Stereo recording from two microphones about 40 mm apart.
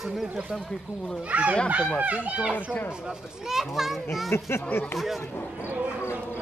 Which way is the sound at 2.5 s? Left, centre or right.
Left.